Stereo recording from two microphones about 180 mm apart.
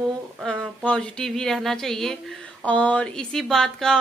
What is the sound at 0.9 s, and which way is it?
A woman's voice, 5° left (ahead or behind).